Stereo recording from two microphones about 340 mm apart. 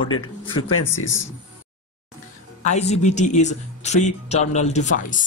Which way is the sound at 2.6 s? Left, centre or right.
Centre.